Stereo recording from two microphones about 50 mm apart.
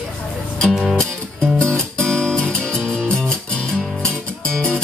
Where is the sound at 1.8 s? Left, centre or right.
Centre.